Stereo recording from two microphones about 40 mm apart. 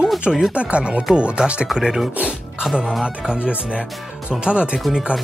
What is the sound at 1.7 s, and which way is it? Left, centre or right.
Speech, centre.